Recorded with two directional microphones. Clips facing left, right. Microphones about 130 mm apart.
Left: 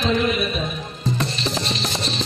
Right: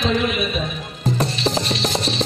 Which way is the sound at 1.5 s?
45° right (ahead or behind).